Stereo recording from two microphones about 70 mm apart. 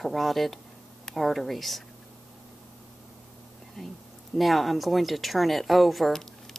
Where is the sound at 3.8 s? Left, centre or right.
Centre.